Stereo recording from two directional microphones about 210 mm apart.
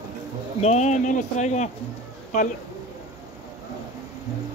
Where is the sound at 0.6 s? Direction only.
35° left (ahead or behind).